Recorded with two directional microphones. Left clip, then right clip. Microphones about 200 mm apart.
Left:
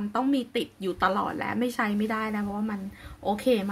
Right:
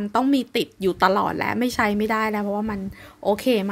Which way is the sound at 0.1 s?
40° right (ahead or behind).